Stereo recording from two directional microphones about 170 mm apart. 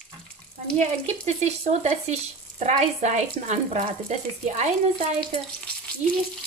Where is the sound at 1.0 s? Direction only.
40° right (ahead or behind).